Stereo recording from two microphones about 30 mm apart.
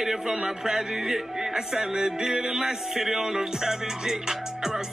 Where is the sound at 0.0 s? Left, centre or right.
Centre.